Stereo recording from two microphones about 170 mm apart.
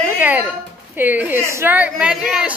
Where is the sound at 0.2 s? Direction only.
10° right (ahead or behind).